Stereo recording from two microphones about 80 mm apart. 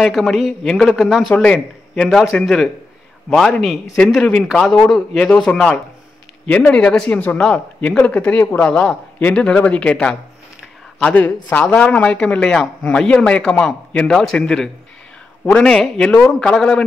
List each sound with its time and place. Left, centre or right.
0.0 s a man's voice: centre
4.5 s a man's voice: centre
11.1 s speech: left